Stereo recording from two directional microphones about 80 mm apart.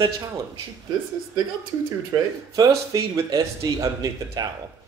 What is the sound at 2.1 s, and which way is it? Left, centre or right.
Speech, right.